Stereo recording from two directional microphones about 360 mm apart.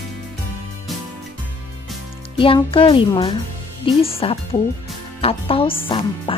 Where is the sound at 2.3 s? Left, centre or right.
Centre.